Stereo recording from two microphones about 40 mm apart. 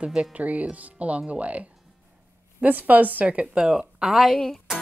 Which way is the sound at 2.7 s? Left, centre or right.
Right.